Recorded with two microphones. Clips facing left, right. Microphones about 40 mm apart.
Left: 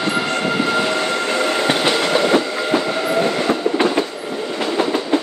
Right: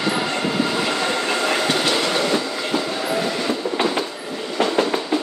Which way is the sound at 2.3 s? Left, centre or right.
Left.